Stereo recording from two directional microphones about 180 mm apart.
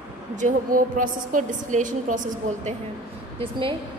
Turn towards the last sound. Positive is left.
turn(degrees=-30)  # may be behind; listen again after turning